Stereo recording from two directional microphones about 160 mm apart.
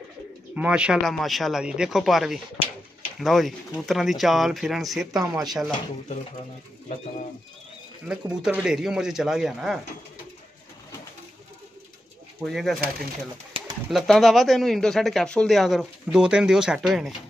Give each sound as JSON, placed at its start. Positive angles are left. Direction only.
{"t": 0.6, "sound": "speech", "side_deg": -5}
{"t": 5.2, "sound": "speech", "side_deg": -20}
{"t": 5.5, "sound": "speech", "side_deg": 0}
{"t": 8.1, "sound": "speech", "side_deg": -5}
{"t": 12.4, "sound": "speech", "side_deg": 0}
{"t": 13.8, "sound": "speech", "side_deg": 0}